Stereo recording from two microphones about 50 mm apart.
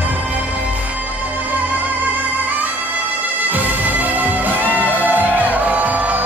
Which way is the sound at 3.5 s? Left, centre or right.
Right.